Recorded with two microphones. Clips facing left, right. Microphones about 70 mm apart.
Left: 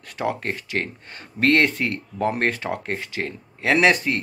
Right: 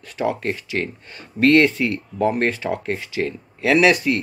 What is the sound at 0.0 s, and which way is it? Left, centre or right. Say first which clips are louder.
Speech: right 3 dB; left.